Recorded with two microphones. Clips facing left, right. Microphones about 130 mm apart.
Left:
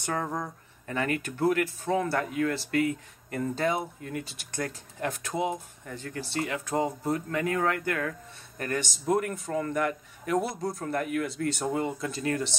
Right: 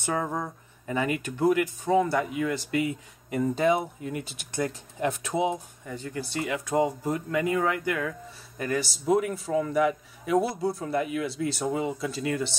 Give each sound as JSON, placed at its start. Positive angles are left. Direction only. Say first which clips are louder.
{"t": 0.0, "sound": "speech", "louder": "right 2 dB", "side_deg": -5}
{"t": 5.3, "sound": "speech", "louder": "right 2 dB", "side_deg": -25}
{"t": 5.9, "sound": "speech", "louder": "right 3 dB", "side_deg": -10}